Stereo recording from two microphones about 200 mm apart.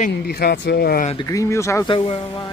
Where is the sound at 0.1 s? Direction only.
55° left (ahead or behind).